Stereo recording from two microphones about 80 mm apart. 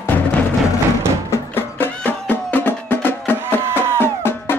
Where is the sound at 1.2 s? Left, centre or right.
Left.